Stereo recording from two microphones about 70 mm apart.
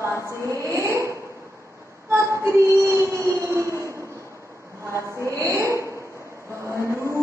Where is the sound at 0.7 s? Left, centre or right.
Right.